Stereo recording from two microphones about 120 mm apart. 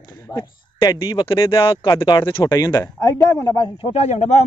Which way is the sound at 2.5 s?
30° left (ahead or behind).